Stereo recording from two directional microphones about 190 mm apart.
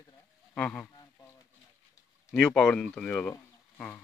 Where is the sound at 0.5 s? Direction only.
10° left (ahead or behind).